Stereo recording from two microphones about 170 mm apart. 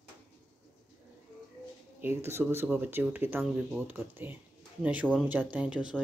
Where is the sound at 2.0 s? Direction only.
15° right (ahead or behind).